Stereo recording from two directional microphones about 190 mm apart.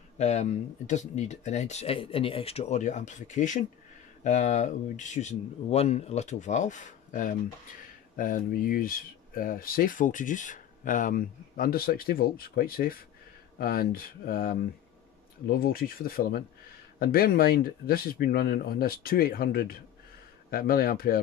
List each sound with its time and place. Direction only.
0.2 s speech: 35° left (ahead or behind)